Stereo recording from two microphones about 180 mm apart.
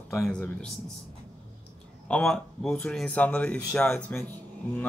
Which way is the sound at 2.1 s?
5° left (ahead or behind).